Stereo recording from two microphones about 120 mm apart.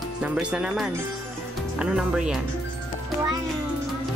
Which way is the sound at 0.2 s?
10° right (ahead or behind).